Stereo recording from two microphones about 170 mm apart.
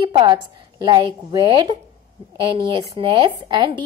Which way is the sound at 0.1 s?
25° right (ahead or behind).